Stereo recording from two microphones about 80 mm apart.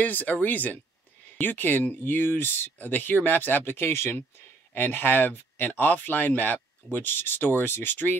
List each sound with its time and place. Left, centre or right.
0.0 s speech: left